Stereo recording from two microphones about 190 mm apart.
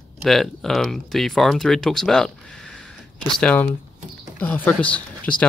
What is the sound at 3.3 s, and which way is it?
Speech, 5° left (ahead or behind).